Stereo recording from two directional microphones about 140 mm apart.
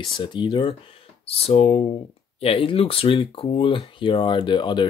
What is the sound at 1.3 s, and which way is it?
Speech, 45° left (ahead or behind).